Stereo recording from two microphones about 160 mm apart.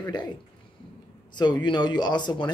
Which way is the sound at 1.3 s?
25° left (ahead or behind).